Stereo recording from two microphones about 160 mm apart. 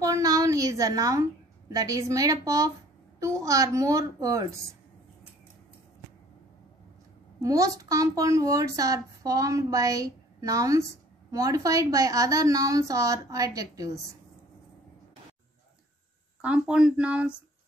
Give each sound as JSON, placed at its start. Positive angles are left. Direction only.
{"t": 0.0, "sound": "a sound", "side_deg": -20}
{"t": 1.7, "sound": "speech", "side_deg": -20}
{"t": 7.4, "sound": "speech", "side_deg": -20}
{"t": 16.3, "sound": "speech", "side_deg": -5}